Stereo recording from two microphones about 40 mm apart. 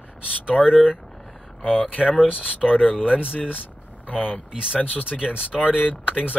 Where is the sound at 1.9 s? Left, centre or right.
Left.